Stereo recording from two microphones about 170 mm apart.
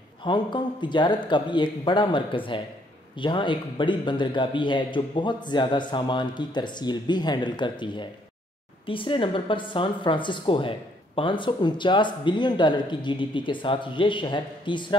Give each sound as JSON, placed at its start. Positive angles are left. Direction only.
{"t": 0.2, "sound": "a woman's voice", "side_deg": 25}